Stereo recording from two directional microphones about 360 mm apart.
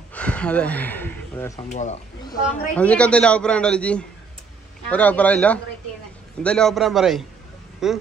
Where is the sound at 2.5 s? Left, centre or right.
Centre.